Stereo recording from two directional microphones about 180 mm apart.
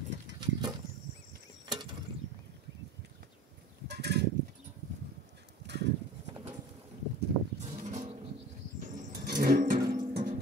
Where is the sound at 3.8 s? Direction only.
70° right (ahead or behind).